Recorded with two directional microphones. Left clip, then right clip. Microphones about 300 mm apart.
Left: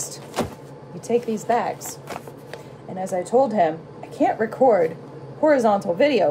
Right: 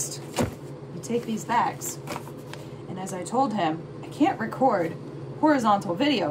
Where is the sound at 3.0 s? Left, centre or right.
Centre.